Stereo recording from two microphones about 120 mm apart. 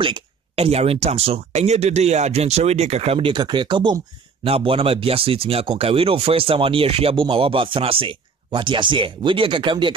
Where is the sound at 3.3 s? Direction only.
35° right (ahead or behind).